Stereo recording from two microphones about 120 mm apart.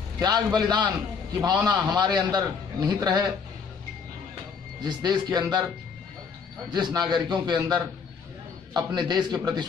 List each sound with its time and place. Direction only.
0.2 s a man's voice: 35° right (ahead or behind)
4.8 s a man's voice: 35° right (ahead or behind)
6.7 s a man's voice: 35° right (ahead or behind)